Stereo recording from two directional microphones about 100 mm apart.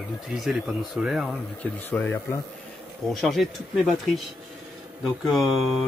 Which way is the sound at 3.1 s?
Centre (ahead or behind).